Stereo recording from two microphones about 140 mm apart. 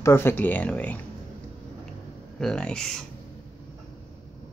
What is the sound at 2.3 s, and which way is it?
Speech, 5° left (ahead or behind).